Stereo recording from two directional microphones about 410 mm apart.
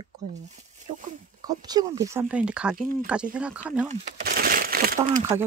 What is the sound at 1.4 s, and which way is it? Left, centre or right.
Speech, centre.